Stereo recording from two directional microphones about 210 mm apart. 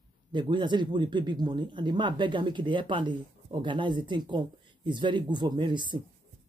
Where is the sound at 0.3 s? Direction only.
20° right (ahead or behind).